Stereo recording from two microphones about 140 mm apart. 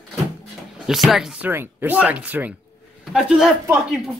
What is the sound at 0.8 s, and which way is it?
Speech, centre (ahead or behind).